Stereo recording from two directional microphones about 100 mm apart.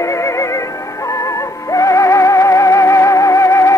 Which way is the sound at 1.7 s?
30° left (ahead or behind).